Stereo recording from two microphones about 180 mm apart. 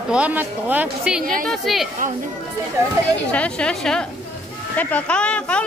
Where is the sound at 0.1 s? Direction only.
10° right (ahead or behind).